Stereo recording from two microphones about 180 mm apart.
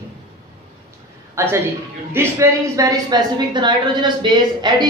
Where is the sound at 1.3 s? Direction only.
15° right (ahead or behind).